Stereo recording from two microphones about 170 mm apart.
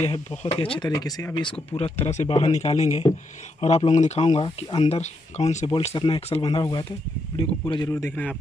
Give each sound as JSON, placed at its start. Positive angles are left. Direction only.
{"t": 0.0, "sound": "speech", "side_deg": 35}
{"t": 4.3, "sound": "speech", "side_deg": 30}
{"t": 6.4, "sound": "speech", "side_deg": 25}